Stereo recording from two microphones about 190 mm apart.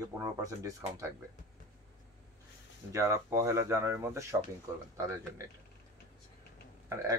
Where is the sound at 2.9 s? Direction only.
15° right (ahead or behind).